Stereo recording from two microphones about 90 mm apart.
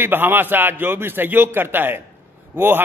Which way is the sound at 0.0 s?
25° right (ahead or behind).